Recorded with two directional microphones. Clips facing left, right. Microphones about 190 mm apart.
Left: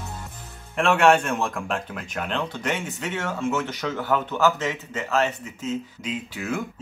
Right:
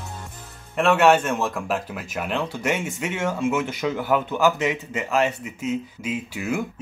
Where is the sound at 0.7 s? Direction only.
Centre (ahead or behind).